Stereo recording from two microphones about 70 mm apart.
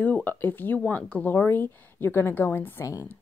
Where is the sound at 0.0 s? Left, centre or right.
Left.